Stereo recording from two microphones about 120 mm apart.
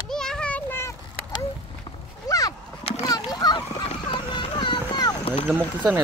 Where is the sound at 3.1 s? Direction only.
35° left (ahead or behind).